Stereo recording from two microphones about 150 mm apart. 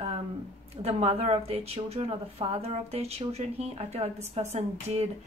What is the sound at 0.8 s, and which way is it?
A woman's voice, 45° right (ahead or behind).